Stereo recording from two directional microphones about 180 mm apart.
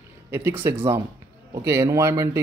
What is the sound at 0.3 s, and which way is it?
A man's voice, 15° right (ahead or behind).